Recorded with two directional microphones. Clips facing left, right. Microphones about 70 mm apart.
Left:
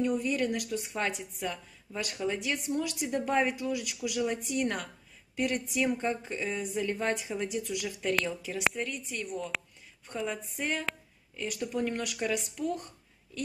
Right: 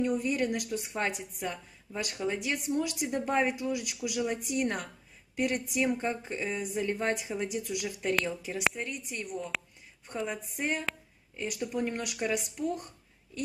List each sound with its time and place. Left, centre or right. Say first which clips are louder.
0.0 s speech: even; centre
7.2 s speech: even; centre
9.1 s speech: left 1 dB; right
9.5 s speech: even; centre
10.0 s speech: even; centre
12.3 s speech: right 1 dB; centre